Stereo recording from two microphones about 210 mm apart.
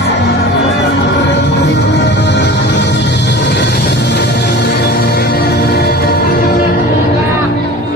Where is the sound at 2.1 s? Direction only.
55° left (ahead or behind).